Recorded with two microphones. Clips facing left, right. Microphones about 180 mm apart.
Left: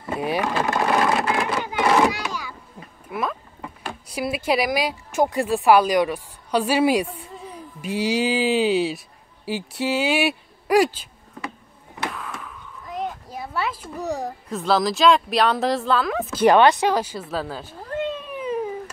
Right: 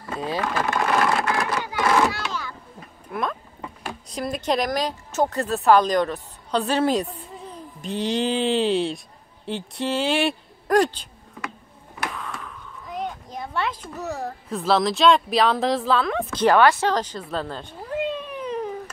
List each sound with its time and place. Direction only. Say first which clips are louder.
0.0 s speech: left 3 dB; 20° left (ahead or behind)
0.7 s a sound: even; 25° left (ahead or behind); by 2.5 s 10° left (ahead or behind)
3.1 s boat: left 1 dB; 5° left (ahead or behind)
4.1 s speech: left 2 dB; 10° left (ahead or behind)
12.1 s a sound: even; centre (ahead or behind)
14.5 s speech: even; centre (ahead or behind)
16.4 s cat: left 2 dB; 20° left (ahead or behind)